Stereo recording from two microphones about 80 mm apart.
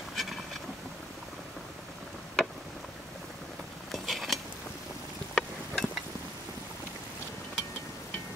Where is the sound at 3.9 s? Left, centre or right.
Centre.